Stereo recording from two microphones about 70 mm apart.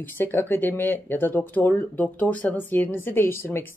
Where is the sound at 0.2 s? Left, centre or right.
Left.